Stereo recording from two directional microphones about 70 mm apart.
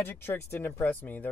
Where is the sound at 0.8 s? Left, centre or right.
Left.